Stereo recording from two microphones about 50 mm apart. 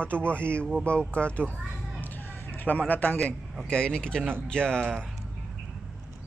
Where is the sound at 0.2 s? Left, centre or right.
Left.